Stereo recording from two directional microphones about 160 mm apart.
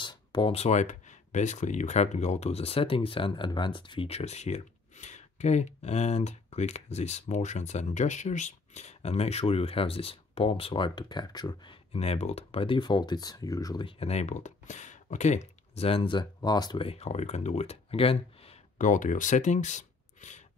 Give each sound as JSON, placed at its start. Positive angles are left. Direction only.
{"t": 0.0, "sound": "speech", "side_deg": 30}
{"t": 13.8, "sound": "speech", "side_deg": 40}
{"t": 18.8, "sound": "speech", "side_deg": 55}